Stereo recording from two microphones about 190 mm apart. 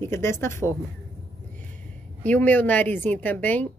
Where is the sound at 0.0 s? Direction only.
15° left (ahead or behind).